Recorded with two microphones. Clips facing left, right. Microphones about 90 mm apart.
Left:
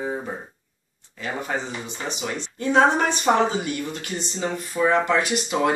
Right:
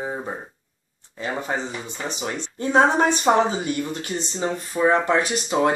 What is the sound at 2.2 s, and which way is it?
Speech, 35° right (ahead or behind).